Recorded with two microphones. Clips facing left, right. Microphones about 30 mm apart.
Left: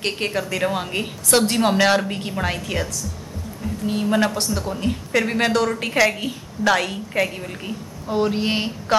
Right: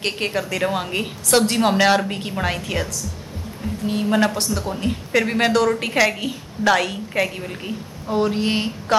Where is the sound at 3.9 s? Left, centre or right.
Centre.